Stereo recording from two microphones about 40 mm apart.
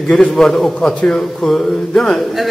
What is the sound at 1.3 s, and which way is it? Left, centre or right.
Speech, centre.